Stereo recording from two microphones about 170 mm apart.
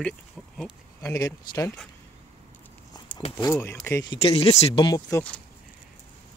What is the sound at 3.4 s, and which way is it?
Speech, 20° left (ahead or behind).